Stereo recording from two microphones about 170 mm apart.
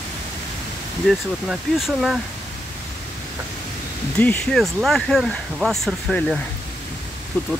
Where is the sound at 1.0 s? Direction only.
Centre (ahead or behind).